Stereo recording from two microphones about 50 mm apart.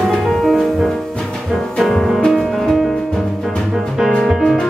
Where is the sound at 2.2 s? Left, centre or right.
Centre.